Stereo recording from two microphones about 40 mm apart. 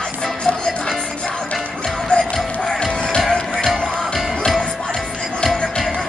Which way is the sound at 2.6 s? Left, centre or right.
Centre.